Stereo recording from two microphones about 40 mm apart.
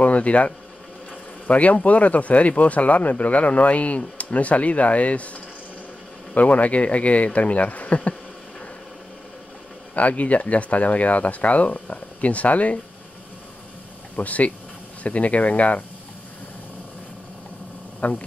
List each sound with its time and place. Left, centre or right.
0.0 s speech: left
9.9 s speech: left
14.1 s speech: left
18.0 s speech: left